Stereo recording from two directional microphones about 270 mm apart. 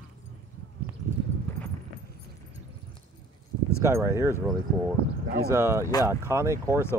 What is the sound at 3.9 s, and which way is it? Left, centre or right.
Speech, centre.